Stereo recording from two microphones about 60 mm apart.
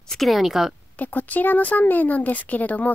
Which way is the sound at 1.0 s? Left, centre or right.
Left.